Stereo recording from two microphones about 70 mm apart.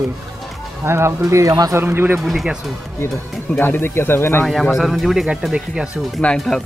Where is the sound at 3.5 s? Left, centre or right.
Left.